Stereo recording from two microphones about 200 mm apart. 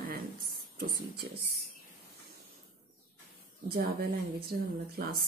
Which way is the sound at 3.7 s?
50° right (ahead or behind).